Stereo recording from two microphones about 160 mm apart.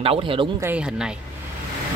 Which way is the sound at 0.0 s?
35° right (ahead or behind).